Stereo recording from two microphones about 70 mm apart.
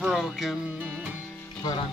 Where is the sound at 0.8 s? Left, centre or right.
Right.